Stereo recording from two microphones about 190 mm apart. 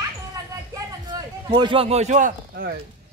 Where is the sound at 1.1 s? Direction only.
25° right (ahead or behind); by 2.7 s 45° right (ahead or behind).